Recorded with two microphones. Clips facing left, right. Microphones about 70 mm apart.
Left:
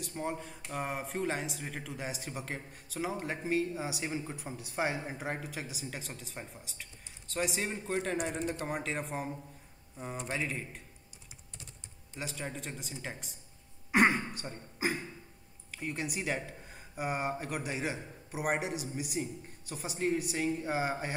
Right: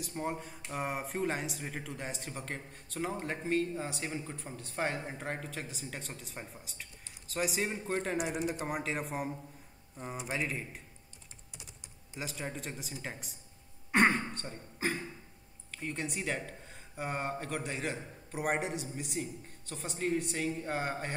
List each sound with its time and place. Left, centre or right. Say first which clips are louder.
0.0 s speech: even; centre
11.5 s typing: even; centre
12.2 s speech: even; centre